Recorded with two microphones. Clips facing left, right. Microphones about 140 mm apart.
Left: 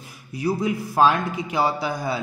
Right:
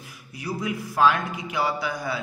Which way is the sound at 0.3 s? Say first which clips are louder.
Left 6 dB; 30° left (ahead or behind).